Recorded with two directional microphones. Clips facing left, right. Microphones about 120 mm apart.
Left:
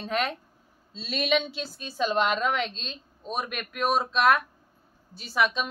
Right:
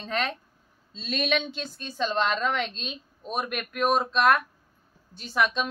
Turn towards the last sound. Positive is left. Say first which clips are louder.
# even
turn(degrees=0)  # may be behind; listen again after turning